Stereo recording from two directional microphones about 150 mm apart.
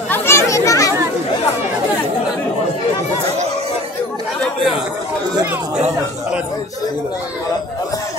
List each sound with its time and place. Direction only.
0.1 s a child's voice: 15° left (ahead or behind)